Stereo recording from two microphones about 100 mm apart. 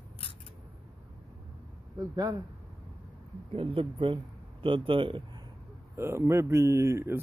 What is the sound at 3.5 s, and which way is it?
Speech, 65° right (ahead or behind).